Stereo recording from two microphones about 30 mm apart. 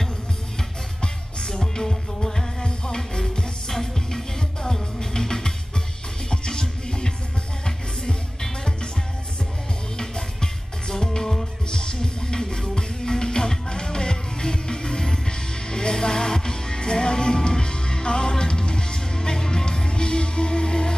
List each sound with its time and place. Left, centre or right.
1.0 s music: left
1.6 s music: centre
9.9 s music: left